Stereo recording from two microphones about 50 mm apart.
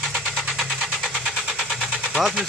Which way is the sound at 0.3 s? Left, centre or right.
Centre.